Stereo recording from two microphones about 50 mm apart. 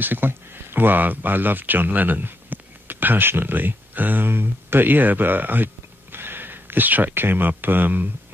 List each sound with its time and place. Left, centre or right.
0.0 s speech: right